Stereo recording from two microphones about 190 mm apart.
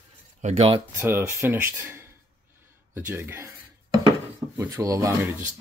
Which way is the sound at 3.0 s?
10° right (ahead or behind).